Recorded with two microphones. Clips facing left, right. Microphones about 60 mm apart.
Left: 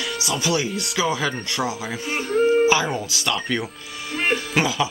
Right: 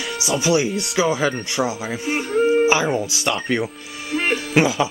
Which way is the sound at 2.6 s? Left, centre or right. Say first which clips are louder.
Right 1 dB; right.